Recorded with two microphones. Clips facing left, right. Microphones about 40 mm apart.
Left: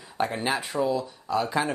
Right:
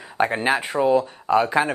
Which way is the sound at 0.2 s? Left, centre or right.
Right.